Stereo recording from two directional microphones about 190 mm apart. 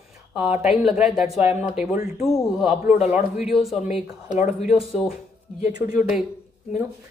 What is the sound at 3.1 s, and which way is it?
Speech, centre (ahead or behind).